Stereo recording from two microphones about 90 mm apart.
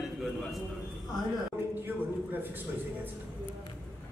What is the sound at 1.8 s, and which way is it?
Speech, 20° right (ahead or behind).